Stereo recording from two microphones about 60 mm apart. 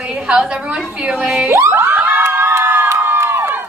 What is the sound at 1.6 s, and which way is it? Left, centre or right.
Crowd, right.